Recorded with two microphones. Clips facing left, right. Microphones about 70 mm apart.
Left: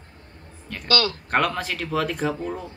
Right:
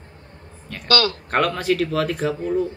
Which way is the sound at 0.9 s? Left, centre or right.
Right.